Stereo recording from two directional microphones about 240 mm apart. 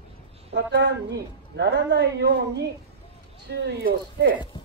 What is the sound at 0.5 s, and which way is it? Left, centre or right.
A man's voice, right.